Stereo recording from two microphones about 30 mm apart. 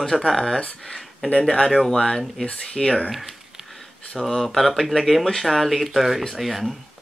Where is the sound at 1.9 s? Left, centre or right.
Centre.